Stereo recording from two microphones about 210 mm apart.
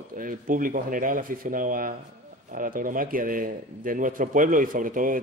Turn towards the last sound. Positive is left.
turn(degrees=-40)  # may be behind; listen again after turning